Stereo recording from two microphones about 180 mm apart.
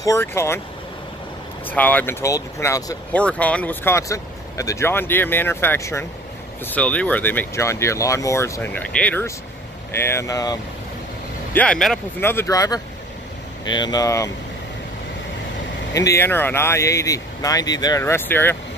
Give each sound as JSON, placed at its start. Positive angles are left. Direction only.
{"t": 0.0, "sound": "speech", "side_deg": 15}
{"t": 1.7, "sound": "speech", "side_deg": 10}
{"t": 11.5, "sound": "speech", "side_deg": 5}
{"t": 15.9, "sound": "speech", "side_deg": 15}